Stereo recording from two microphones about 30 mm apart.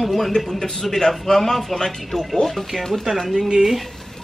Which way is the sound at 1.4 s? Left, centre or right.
Centre.